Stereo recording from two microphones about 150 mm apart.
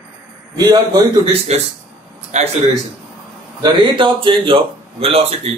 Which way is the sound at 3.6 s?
30° right (ahead or behind).